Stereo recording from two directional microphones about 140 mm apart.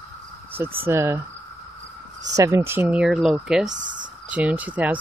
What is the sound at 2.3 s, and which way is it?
A woman's voice, 20° right (ahead or behind).